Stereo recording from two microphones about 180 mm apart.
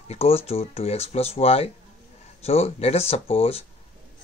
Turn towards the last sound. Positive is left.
turn(degrees=30)  # may be behind; listen again after turning